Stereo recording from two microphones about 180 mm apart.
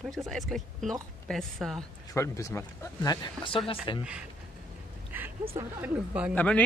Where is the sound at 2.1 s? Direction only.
15° left (ahead or behind).